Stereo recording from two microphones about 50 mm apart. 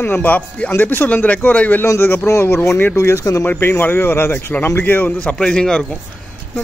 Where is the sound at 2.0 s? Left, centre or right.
Left.